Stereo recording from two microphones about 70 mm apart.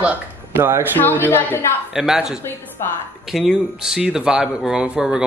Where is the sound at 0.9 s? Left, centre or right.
Left.